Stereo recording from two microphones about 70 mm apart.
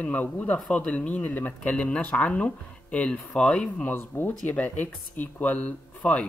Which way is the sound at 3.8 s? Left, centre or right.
Left.